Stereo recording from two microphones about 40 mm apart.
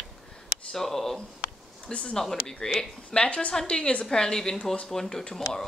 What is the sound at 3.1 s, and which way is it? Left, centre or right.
Speech, left.